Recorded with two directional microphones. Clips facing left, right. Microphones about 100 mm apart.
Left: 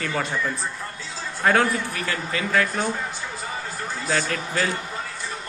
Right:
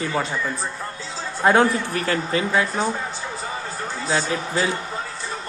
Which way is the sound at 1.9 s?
35° right (ahead or behind).